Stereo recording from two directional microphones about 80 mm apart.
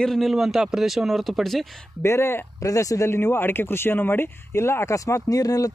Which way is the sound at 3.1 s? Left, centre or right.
Left.